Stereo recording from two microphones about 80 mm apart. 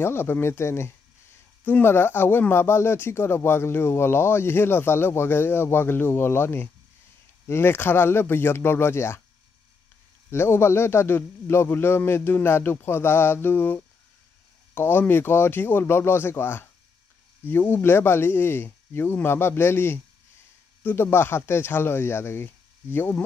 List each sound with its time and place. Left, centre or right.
0.0 s speech: left
10.3 s speech: left